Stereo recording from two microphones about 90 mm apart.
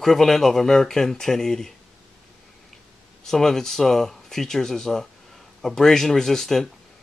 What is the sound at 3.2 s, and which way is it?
Speech, 5° left (ahead or behind).